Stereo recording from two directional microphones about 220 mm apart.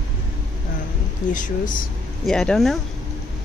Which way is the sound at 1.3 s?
35° left (ahead or behind).